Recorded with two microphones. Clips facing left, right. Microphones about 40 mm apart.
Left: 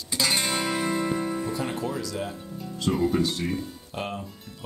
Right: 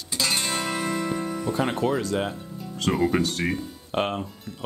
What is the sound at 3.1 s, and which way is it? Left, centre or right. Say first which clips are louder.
Speech: right 1 dB; right.